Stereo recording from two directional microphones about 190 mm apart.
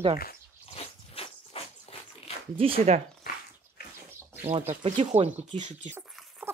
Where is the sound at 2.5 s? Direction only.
30° right (ahead or behind).